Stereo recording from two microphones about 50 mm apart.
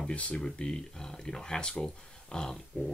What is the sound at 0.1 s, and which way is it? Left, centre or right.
Speech, left.